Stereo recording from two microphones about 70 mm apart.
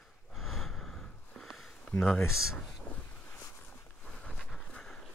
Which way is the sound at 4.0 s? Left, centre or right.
Centre.